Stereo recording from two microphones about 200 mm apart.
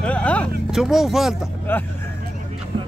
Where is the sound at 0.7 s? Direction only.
Centre (ahead or behind).